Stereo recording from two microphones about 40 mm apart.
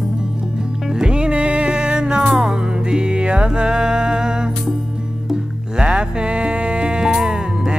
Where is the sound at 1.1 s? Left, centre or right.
Right.